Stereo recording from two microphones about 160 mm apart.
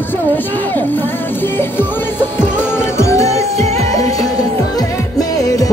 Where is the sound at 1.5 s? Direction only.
15° left (ahead or behind).